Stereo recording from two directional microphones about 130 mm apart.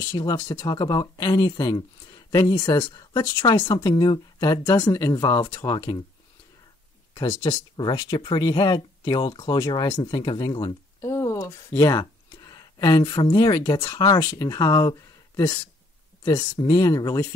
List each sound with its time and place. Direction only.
0.1 s speech: 35° left (ahead or behind)
7.2 s speech: 35° left (ahead or behind)
11.1 s speech: 25° left (ahead or behind)